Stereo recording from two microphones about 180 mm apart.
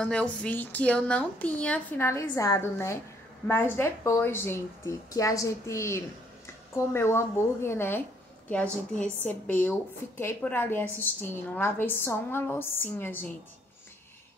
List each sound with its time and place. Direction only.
0.0 s speech: 5° left (ahead or behind)